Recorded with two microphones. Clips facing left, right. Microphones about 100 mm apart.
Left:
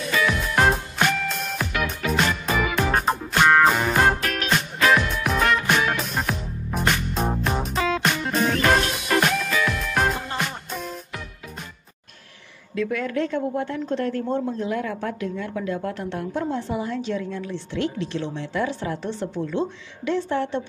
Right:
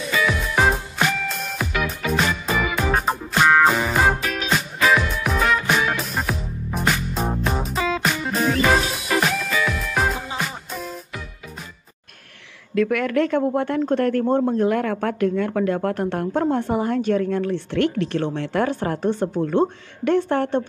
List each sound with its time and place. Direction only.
0.1 s music: centre (ahead or behind)
12.7 s speech: 65° right (ahead or behind)